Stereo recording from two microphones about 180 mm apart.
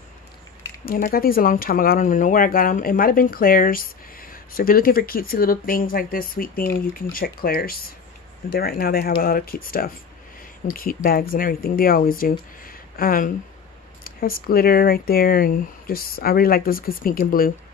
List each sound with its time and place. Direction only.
0.8 s speech: 50° left (ahead or behind)